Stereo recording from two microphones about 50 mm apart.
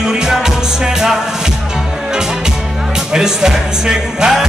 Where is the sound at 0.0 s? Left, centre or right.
Centre.